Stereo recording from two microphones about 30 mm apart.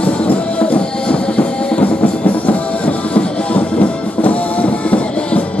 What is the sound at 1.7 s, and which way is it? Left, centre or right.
Music, left.